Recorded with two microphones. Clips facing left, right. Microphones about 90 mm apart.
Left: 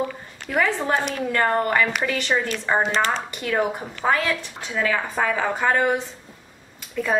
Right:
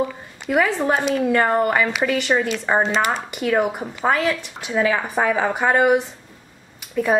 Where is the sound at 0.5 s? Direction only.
10° right (ahead or behind).